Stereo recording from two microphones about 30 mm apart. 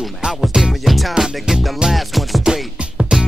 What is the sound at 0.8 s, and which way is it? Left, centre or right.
Music, centre.